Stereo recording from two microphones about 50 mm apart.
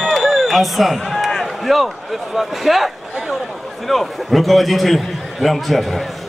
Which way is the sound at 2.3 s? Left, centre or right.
Centre.